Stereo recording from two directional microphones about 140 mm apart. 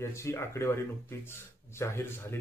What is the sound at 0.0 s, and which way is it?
Speech, 20° left (ahead or behind).